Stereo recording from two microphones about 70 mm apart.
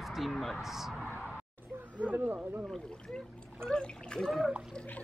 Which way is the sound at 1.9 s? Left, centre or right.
Right.